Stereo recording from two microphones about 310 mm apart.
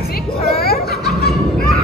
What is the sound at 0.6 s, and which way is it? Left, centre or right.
Snicker, left.